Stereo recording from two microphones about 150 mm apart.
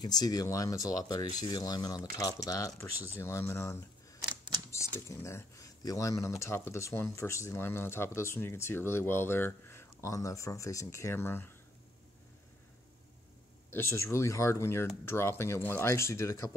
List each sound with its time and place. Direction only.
0.2 s speech: 25° left (ahead or behind)
13.7 s speech: 15° left (ahead or behind)